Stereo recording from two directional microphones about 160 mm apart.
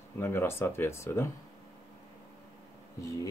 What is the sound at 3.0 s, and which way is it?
Speech, 20° left (ahead or behind).